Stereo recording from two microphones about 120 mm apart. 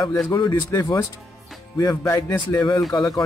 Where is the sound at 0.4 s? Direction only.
35° left (ahead or behind).